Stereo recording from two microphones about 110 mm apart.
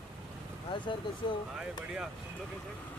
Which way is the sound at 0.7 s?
45° left (ahead or behind).